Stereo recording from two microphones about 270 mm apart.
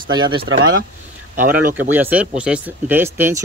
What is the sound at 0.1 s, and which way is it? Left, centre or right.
Speech, centre.